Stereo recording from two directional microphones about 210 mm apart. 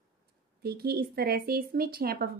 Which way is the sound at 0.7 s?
45° right (ahead or behind).